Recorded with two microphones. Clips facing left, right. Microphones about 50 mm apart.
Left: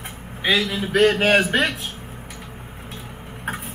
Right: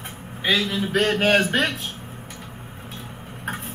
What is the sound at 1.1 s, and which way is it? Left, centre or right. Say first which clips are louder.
Speech: left 1 dB; left.